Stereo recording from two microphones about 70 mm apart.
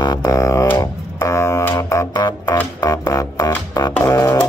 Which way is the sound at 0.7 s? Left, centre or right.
Left.